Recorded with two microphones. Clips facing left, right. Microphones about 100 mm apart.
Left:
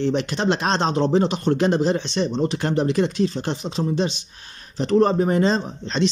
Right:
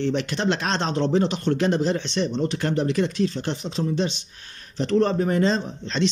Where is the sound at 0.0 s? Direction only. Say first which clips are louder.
Left 2 dB; 20° left (ahead or behind).